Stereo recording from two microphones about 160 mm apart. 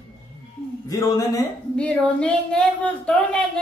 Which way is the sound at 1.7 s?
5° left (ahead or behind).